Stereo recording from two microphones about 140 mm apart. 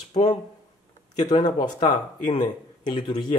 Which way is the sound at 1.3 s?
30° left (ahead or behind).